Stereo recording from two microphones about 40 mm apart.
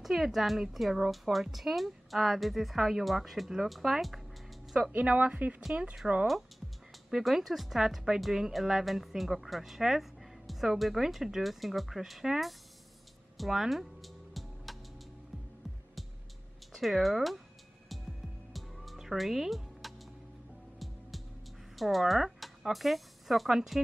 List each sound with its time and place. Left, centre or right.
0.0 s speech: centre
4.9 s speech: right
7.2 s speech: centre
13.4 s music: centre
16.7 s speech: centre
18.5 s music: centre
21.7 s speech: centre